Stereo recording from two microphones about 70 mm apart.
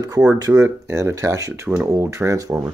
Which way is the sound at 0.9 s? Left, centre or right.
Right.